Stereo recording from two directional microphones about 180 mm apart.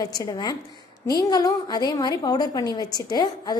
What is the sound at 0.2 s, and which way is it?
A woman's voice, 20° left (ahead or behind).